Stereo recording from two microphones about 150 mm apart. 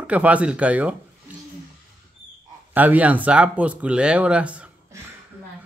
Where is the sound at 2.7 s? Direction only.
10° right (ahead or behind).